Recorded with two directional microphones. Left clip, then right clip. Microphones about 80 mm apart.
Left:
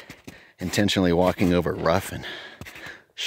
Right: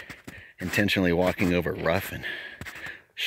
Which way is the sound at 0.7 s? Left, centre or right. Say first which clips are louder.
Left 2 dB; left.